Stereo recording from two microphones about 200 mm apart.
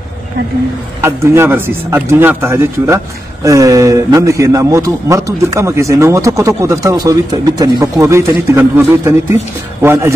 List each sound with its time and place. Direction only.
1.0 s a man's voice: 10° right (ahead or behind)